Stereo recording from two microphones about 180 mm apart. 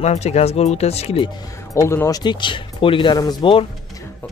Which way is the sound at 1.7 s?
15° left (ahead or behind).